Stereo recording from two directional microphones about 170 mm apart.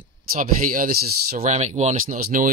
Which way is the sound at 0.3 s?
55° right (ahead or behind).